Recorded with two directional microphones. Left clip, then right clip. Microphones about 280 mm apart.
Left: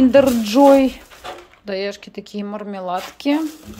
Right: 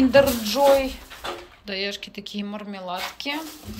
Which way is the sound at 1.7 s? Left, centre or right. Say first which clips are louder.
Left 4 dB; left.